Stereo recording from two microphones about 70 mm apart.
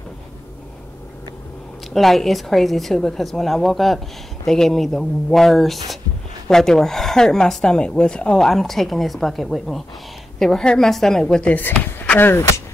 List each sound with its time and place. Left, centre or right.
2.0 s speech: centre
11.5 s speech: left
12.3 s speech: left